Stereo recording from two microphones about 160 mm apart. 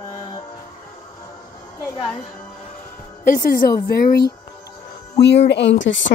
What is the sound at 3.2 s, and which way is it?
Speech, 60° left (ahead or behind).